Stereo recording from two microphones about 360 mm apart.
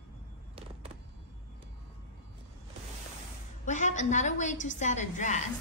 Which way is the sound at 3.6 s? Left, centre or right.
Centre.